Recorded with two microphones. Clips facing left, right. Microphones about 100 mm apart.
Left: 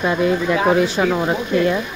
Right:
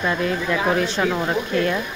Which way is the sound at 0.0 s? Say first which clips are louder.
Left 5 dB; 15° left (ahead or behind).